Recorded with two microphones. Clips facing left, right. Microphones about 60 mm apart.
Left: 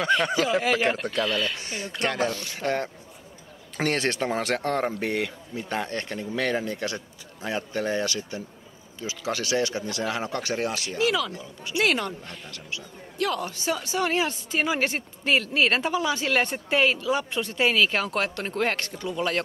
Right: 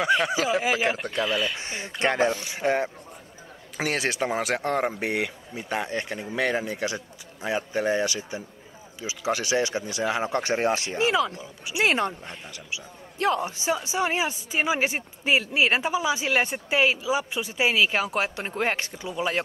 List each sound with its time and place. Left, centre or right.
0.0 s a woman's voice: centre
1.6 s a woman's voice: right